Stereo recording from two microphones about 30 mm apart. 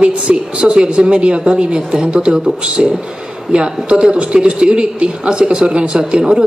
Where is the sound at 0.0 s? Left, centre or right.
Right.